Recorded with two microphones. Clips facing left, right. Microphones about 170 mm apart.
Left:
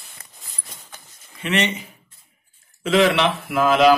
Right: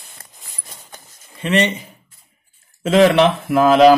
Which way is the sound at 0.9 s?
35° right (ahead or behind).